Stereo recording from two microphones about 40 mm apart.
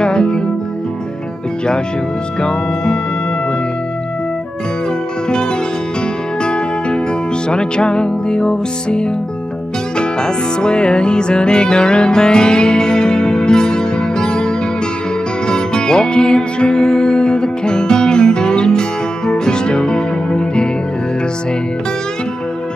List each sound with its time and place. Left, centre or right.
0.0 s music: left
2.4 s music: left
6.4 s music: left